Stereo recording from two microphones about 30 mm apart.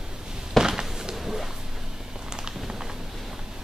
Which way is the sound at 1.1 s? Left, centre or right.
Centre.